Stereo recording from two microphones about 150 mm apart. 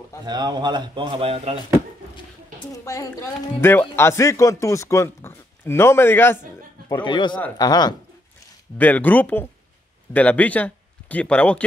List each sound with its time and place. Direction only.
0.2 s speech: 30° right (ahead or behind)
2.7 s a woman's voice: 20° left (ahead or behind)
7.1 s a woman's voice: 30° left (ahead or behind)
8.7 s speech: 10° left (ahead or behind)